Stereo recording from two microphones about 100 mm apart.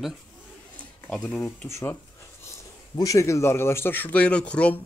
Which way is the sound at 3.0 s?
35° left (ahead or behind).